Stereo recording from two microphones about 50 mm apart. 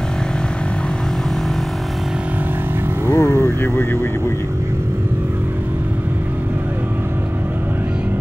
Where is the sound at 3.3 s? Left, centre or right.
Right.